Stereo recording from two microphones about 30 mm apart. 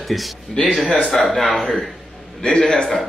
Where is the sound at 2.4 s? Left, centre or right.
Left.